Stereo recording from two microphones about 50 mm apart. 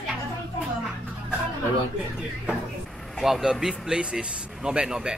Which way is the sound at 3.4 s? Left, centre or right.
Centre.